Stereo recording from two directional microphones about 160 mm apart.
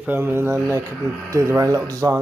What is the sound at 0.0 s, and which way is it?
Speech, 10° right (ahead or behind).